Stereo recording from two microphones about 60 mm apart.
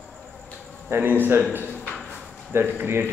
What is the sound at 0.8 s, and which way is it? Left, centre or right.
Speech, right.